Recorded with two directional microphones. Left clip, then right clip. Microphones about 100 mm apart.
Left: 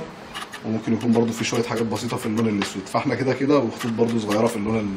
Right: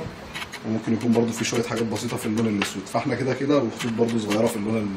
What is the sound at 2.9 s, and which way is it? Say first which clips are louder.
Speech: left 4 dB; 25° left (ahead or behind).